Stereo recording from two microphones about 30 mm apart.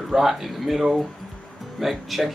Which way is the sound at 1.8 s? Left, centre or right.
Centre.